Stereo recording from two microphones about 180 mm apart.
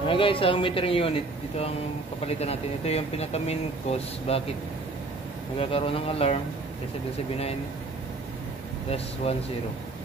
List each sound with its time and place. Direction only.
0.0 s speech: 30° left (ahead or behind)
5.6 s speech: 30° left (ahead or behind)
8.9 s speech: 35° left (ahead or behind)